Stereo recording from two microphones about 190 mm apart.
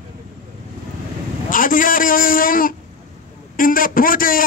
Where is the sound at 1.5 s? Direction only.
45° left (ahead or behind).